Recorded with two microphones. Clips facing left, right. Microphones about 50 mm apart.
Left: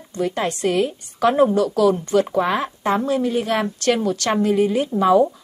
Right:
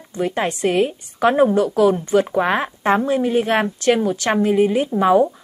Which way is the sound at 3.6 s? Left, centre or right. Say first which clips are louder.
Right 2 dB; centre.